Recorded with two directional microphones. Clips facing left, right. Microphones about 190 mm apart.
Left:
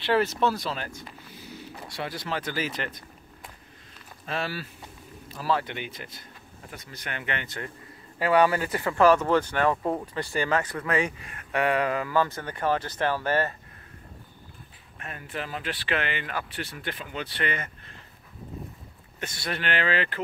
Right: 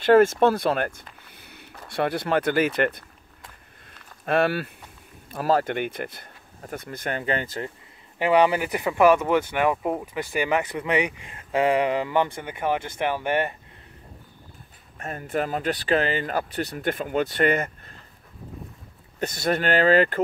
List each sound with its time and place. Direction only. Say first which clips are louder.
0.0 s speech: right 8 dB; 50° right (ahead or behind)
1.2 s a sound: left 7 dB; 60° right (ahead or behind)
1.9 s speech: right 9 dB; 55° right (ahead or behind)
4.3 s speech: right 10 dB; 60° right (ahead or behind); by 7.4 s 40° right (ahead or behind)
8.2 s speech: right 2 dB; 20° right (ahead or behind)
15.0 s speech: right 9 dB; 40° right (ahead or behind)
19.1 s speech: right 9 dB; 40° right (ahead or behind)